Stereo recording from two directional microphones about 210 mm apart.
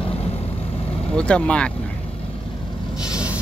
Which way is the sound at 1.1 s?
5° left (ahead or behind).